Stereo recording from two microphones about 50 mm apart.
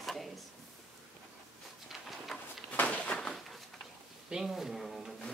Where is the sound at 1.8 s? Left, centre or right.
Centre.